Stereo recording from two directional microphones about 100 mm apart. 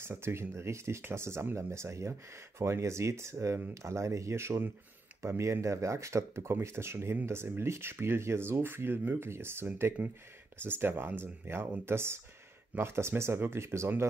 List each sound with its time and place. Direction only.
0.0 s speech: 25° right (ahead or behind)